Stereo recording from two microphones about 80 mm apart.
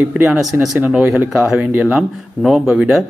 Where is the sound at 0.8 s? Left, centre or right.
Centre.